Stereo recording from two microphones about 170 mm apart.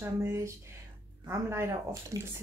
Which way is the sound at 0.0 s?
15° right (ahead or behind).